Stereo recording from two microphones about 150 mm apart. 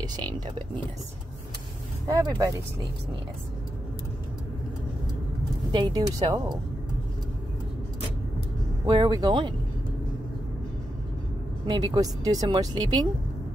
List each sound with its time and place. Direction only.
0.0 s speech: 30° right (ahead or behind)
2.0 s a woman's voice: 25° right (ahead or behind)
5.7 s a woman's voice: 30° right (ahead or behind)
8.8 s speech: 30° right (ahead or behind)
11.6 s a woman's voice: 30° right (ahead or behind)